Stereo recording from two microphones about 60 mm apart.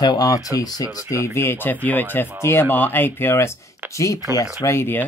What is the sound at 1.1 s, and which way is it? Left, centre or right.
Speech, left.